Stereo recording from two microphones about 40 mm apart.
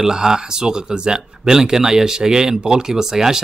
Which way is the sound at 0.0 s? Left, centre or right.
Centre.